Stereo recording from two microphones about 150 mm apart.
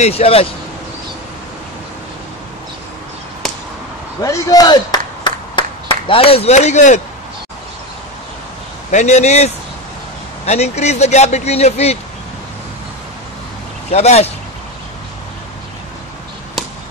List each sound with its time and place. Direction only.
0.0 s speech: 40° left (ahead or behind)
4.2 s clapping: 25° left (ahead or behind); by 7.0 s 50° left (ahead or behind)
8.9 s speech: 50° left (ahead or behind)
13.9 s speech: 45° left (ahead or behind)